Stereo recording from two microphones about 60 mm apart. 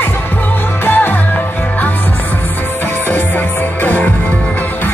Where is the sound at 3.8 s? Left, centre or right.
Left.